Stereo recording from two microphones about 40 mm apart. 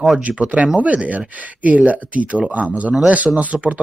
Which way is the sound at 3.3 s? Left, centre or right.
Centre.